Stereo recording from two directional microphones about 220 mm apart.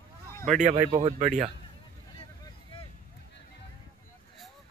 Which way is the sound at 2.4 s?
25° left (ahead or behind).